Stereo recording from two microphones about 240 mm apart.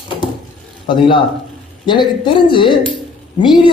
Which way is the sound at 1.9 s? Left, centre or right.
Centre.